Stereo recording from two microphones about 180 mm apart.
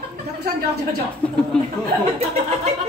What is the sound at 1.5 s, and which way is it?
Speech, 5° left (ahead or behind).